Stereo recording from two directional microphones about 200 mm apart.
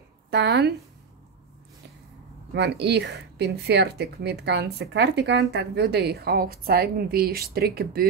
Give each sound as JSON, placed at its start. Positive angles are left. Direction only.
{"t": 0.3, "sound": "speech", "side_deg": -60}
{"t": 2.5, "sound": "a woman's voice", "side_deg": -55}